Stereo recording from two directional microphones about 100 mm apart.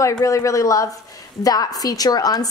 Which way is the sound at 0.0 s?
35° left (ahead or behind).